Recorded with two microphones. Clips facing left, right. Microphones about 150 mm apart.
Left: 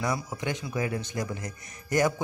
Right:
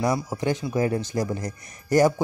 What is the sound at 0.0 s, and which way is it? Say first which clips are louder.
Speech: right 6 dB; 30° right (ahead or behind).